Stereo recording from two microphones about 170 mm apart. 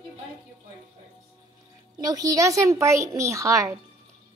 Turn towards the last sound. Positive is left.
turn(degrees=-20)  # may be behind; listen again after turning